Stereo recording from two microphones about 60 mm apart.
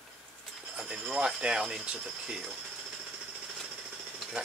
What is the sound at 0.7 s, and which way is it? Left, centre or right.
Speech, centre.